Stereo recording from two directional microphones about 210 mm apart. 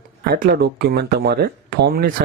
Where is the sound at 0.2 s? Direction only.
50° right (ahead or behind).